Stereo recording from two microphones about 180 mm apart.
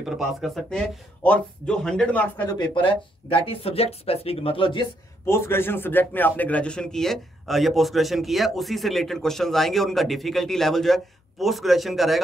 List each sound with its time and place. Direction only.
0.0 s a man's voice: centre (ahead or behind)
2.6 s speech: 30° left (ahead or behind)
5.2 s a man's voice: 15° left (ahead or behind)